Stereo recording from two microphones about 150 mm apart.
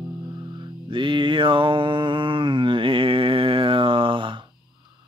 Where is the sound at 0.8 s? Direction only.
35° right (ahead or behind).